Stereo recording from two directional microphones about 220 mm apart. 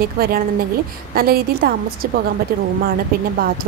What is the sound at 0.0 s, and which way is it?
A woman's voice, 45° right (ahead or behind).